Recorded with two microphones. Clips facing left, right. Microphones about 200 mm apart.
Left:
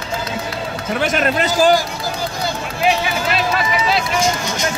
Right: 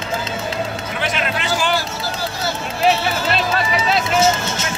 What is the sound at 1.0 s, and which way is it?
Speech, 45° left (ahead or behind).